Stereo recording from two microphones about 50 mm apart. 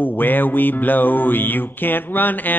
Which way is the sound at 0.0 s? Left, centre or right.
Left.